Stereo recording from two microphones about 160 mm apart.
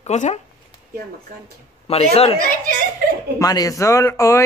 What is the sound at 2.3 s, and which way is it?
Speech, 60° right (ahead or behind).